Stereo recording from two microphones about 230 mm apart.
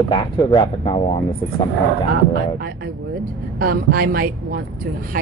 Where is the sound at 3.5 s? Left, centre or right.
Right.